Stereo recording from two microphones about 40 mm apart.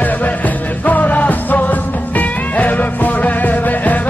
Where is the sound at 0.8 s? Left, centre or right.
Left.